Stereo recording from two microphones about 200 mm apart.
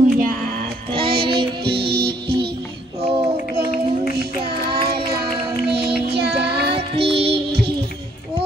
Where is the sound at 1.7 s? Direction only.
55° right (ahead or behind).